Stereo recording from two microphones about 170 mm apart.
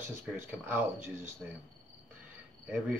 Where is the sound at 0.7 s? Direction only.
15° right (ahead or behind).